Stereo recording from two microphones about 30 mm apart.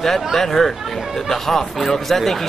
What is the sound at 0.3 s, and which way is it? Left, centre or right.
Speech, centre.